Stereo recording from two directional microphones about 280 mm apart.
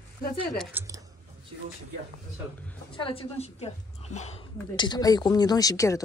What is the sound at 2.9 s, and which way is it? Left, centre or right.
A woman's voice, centre.